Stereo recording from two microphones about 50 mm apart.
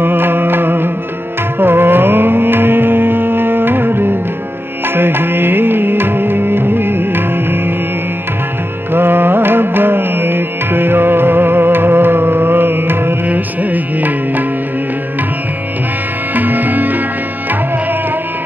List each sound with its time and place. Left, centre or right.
0.0 s music: right
8.9 s music: right
13.3 s music: right
16.3 s music: right